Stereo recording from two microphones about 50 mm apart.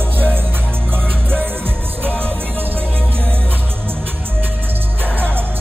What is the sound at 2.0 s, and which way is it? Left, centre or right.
Music, right.